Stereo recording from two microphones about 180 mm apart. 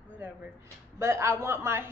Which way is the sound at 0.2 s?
10° right (ahead or behind).